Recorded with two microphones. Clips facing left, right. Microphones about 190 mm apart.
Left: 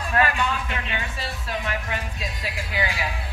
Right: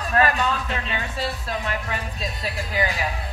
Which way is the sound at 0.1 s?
40° right (ahead or behind).